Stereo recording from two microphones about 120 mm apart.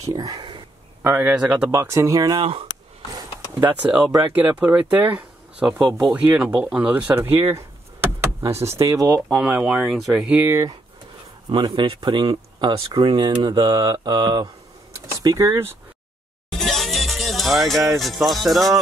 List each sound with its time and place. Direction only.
0.0 s speech: 30° right (ahead or behind)
1.0 s speech: 15° right (ahead or behind)
3.6 s speech: 10° right (ahead or behind)
7.2 s speech: 55° right (ahead or behind)
7.5 s door: 25° right (ahead or behind)
8.5 s speech: 25° right (ahead or behind)
9.3 s speech: 5° right (ahead or behind)
11.5 s speech: 40° right (ahead or behind)
16.5 s music: centre (ahead or behind)